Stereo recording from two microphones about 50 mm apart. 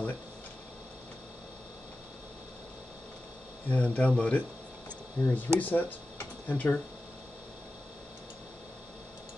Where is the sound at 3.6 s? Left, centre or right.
Left.